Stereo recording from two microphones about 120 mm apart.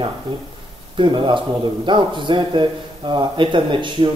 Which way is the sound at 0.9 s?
45° right (ahead or behind).